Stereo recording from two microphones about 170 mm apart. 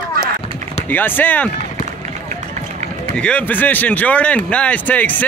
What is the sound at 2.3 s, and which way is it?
Run, 45° right (ahead or behind).